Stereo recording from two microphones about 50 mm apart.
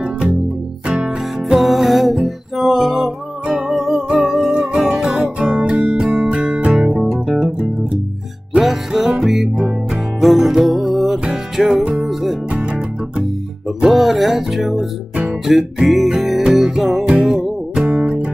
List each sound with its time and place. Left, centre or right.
0.0 s music: centre
1.6 s music: centre; by 7.0 s right
7.0 s guitar: centre
8.5 s music: centre
12.4 s music: right
13.8 s music: centre
17.8 s music: right